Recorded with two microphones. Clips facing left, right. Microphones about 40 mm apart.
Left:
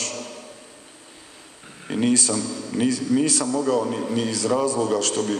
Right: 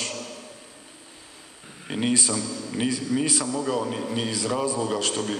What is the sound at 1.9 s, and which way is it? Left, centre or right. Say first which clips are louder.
Speech: left 4 dB; centre.